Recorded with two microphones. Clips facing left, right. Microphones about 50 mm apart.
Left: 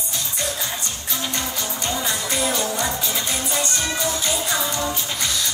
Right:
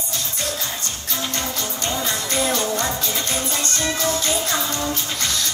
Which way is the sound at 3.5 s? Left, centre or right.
Centre.